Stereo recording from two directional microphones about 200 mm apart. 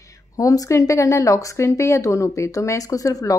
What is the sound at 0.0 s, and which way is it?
Speech, 15° left (ahead or behind).